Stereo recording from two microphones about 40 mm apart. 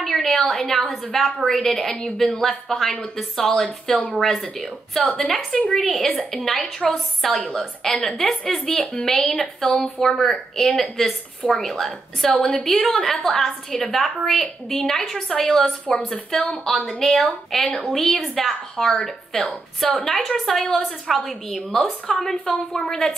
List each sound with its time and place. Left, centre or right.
0.0 s a woman's voice: centre